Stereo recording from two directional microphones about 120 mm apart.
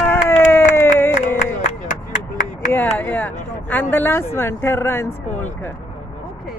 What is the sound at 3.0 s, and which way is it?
Speech, 15° left (ahead or behind).